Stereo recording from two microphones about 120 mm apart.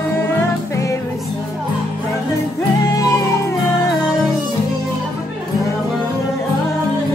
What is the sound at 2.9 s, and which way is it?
Music, 30° left (ahead or behind).